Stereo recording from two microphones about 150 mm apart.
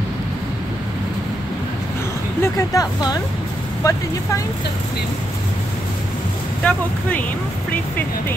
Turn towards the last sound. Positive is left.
turn(degrees=10)  # may be behind; listen again after turning